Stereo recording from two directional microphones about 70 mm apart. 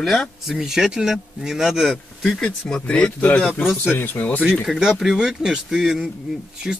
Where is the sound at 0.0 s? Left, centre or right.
Centre.